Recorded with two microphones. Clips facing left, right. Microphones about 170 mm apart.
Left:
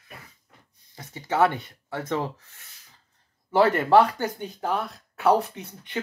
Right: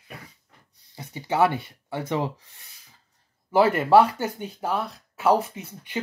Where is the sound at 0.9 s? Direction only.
15° right (ahead or behind).